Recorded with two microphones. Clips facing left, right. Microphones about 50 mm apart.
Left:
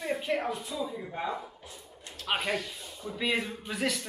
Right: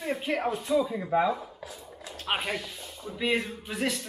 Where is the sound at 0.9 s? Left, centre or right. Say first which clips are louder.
Right 10 dB; right.